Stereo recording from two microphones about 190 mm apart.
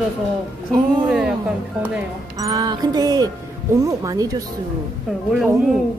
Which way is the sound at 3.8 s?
15° right (ahead or behind).